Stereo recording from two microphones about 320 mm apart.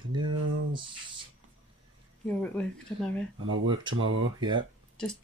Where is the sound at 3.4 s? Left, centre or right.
Right.